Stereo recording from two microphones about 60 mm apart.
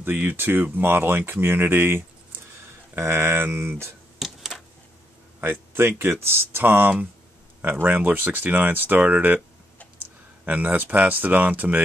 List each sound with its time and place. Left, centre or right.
0.0 s speech: right
4.2 s a sound: centre
5.4 s speech: right